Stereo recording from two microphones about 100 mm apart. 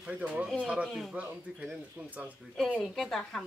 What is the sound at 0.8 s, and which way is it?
Speech, centre (ahead or behind).